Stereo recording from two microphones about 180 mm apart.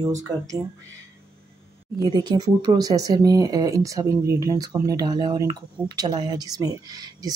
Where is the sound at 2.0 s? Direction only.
25° right (ahead or behind).